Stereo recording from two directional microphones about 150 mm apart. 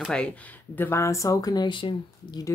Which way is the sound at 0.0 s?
5° left (ahead or behind).